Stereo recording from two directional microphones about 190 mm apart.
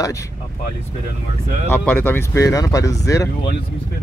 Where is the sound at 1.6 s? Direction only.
10° left (ahead or behind).